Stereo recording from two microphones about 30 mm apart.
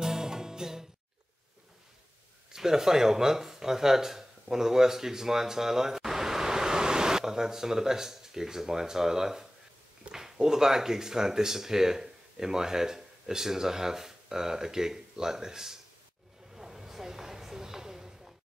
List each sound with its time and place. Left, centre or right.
0.0 s music: centre
2.5 s speech: centre
16.5 s a sound: centre